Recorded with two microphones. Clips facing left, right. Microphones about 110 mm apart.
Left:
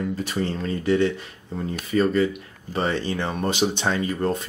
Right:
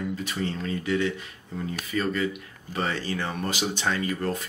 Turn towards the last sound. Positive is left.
turn(degrees=25)  # may be behind; listen again after turning